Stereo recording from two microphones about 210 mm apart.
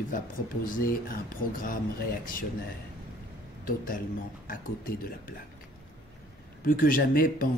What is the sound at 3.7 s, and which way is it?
Speech, 40° left (ahead or behind).